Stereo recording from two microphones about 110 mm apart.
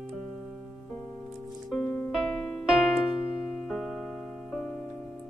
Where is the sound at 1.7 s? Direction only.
Centre (ahead or behind).